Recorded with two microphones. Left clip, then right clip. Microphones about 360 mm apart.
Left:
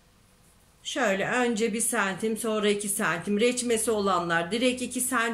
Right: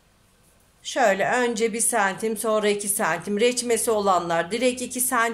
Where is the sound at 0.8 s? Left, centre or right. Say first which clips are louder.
Right 6 dB; centre.